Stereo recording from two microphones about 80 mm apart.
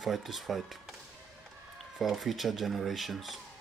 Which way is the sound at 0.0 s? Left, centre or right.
Centre.